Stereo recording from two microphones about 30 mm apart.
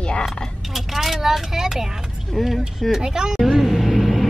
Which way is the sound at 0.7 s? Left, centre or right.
Centre.